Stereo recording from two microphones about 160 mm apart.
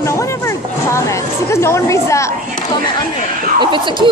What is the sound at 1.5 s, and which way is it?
Speech, 15° left (ahead or behind).